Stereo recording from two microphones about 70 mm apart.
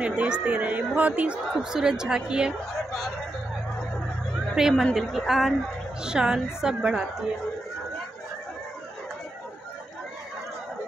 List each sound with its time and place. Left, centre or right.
0.0 s speech: centre
1.5 s a woman's voice: centre
4.6 s a woman's voice: centre